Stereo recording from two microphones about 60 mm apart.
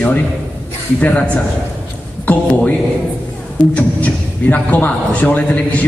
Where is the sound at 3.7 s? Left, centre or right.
Left.